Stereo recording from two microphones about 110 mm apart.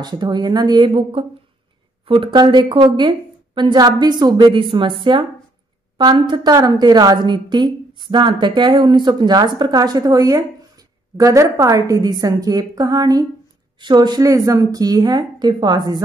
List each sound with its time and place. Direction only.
0.0 s a woman's voice: 40° right (ahead or behind)
1.2 s a woman's voice: 55° right (ahead or behind)
4.6 s a woman's voice: 50° right (ahead or behind)